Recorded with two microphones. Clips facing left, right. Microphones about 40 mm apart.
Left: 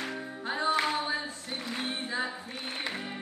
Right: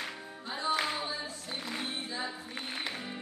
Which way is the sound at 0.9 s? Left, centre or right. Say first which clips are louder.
Left 5 dB; left.